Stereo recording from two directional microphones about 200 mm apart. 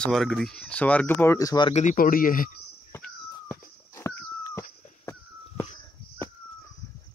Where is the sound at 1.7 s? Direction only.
35° left (ahead or behind).